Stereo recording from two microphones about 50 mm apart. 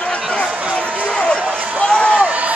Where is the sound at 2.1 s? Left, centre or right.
Right.